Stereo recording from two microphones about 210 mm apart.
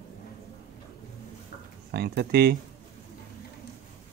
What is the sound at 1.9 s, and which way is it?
Speech, 50° right (ahead or behind).